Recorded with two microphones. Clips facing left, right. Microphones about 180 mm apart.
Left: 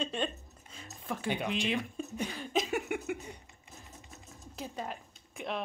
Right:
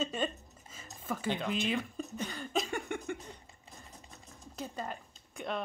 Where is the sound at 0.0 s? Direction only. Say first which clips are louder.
Even; 5° right (ahead or behind).